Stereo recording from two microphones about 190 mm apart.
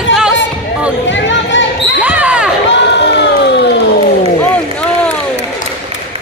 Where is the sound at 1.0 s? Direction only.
75° left (ahead or behind).